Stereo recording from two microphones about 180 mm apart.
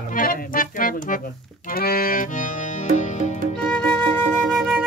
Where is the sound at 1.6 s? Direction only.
55° left (ahead or behind).